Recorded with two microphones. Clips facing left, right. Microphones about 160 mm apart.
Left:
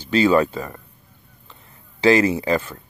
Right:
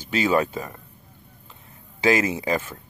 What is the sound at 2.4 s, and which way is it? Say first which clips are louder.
Speech: left 4 dB; 10° right (ahead or behind).